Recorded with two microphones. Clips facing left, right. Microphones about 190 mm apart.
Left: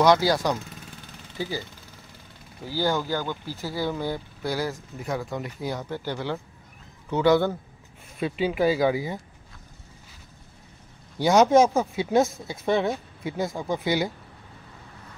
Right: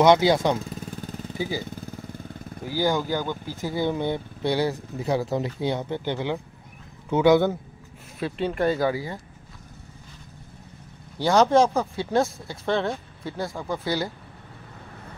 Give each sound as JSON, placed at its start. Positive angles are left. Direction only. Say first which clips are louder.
{"t": 0.0, "sound": "speech", "louder": "right 2 dB", "side_deg": -20}
{"t": 1.4, "sound": "speech", "louder": "right 2 dB", "side_deg": -10}
{"t": 1.8, "sound": "vehicle", "louder": "right 12 dB", "side_deg": -50}
{"t": 2.6, "sound": "speech", "louder": "right 2 dB", "side_deg": -15}
{"t": 8.2, "sound": "speech", "louder": "left 1 dB", "side_deg": 5}
{"t": 11.1, "sound": "speech", "louder": "left 1 dB", "side_deg": 15}
{"t": 11.6, "sound": "speech", "louder": "left 1 dB", "side_deg": 5}